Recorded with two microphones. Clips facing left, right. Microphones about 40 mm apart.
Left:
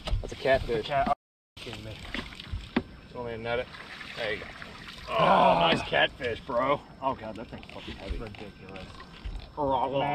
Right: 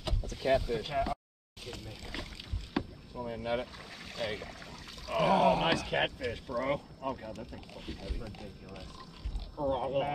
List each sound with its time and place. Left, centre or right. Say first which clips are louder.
0.2 s speech: left 4 dB; left